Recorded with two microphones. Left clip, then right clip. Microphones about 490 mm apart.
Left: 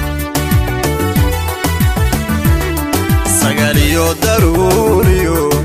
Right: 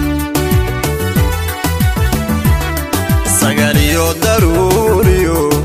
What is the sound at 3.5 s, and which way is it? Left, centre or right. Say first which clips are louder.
Music: right 1 dB; right.